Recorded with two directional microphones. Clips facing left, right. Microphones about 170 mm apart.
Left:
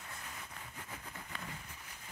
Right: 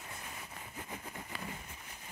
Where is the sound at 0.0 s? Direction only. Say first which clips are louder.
Right 2 dB; 20° right (ahead or behind).